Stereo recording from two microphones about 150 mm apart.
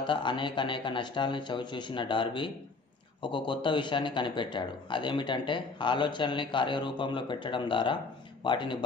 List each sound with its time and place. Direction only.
0.0 s a man's voice: 35° left (ahead or behind)